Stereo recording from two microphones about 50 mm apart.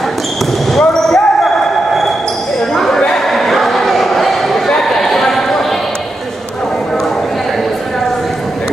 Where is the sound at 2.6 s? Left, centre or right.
Centre.